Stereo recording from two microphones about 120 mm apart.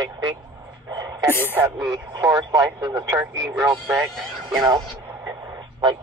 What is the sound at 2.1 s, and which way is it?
Speech, 30° right (ahead or behind).